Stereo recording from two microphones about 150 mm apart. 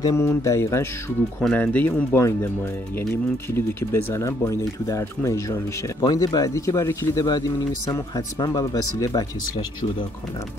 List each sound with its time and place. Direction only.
0.0 s speech: 20° left (ahead or behind)
3.5 s speech: 20° left (ahead or behind)